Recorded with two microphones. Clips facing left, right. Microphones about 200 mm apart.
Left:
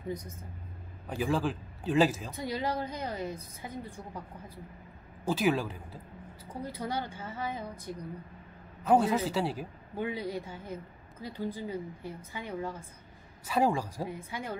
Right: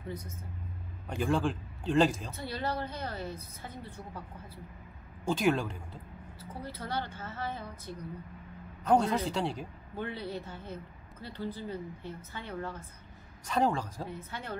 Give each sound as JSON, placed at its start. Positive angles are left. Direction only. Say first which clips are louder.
{"t": 1.0, "sound": "a woman's voice", "louder": "even", "side_deg": 5}
{"t": 5.2, "sound": "speech", "louder": "even", "side_deg": 5}
{"t": 6.5, "sound": "a woman's voice", "louder": "left 2 dB", "side_deg": 15}